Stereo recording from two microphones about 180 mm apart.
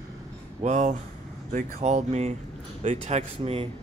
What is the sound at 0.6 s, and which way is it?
Speech, 40° right (ahead or behind).